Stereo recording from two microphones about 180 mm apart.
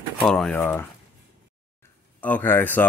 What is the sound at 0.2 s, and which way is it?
Speech, 5° left (ahead or behind).